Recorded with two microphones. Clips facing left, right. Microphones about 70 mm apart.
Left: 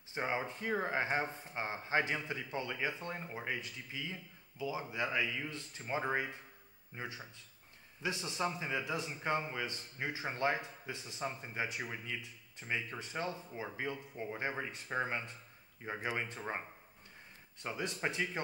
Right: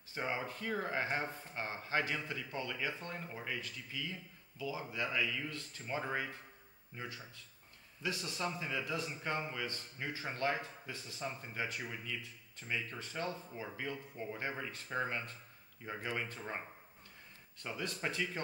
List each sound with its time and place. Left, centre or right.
0.1 s speech: left